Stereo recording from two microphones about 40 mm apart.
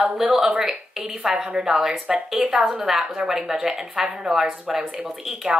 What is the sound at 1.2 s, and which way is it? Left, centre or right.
A woman's voice, centre.